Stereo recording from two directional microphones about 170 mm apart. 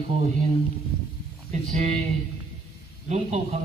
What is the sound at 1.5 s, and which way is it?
Speech, 40° right (ahead or behind).